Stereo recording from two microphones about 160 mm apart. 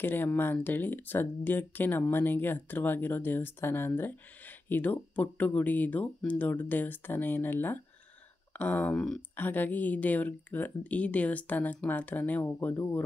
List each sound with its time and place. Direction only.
0.0 s speech: 15° left (ahead or behind)